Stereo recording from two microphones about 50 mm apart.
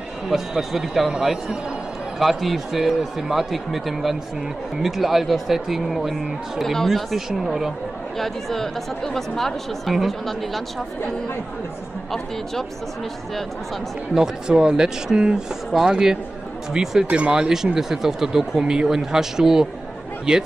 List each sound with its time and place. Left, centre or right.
0.3 s speech: centre
2.1 s speech: centre
8.2 s speech: centre
14.1 s speech: centre